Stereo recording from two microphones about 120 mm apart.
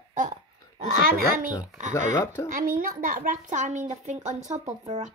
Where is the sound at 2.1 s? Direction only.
35° left (ahead or behind).